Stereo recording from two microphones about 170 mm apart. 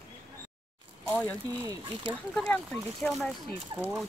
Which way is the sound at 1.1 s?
5° left (ahead or behind).